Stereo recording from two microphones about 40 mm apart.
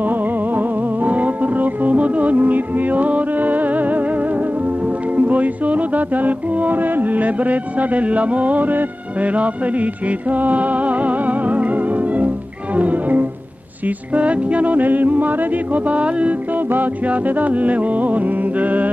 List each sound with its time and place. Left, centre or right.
0.0 s music: right
16.5 s music: right